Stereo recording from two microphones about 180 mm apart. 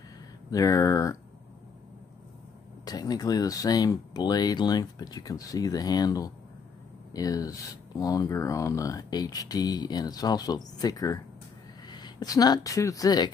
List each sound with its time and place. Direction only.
0.5 s speech: 20° left (ahead or behind)
2.8 s speech: 20° left (ahead or behind)